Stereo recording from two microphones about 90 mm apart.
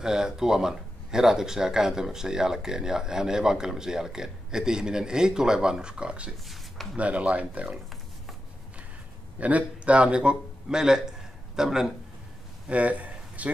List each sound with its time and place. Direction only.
0.0 s speech: 5° right (ahead or behind)
6.4 s speech: centre (ahead or behind)
7.0 s speech: 15° right (ahead or behind)
9.4 s speech: 15° right (ahead or behind)
12.6 s a sound: 15° right (ahead or behind)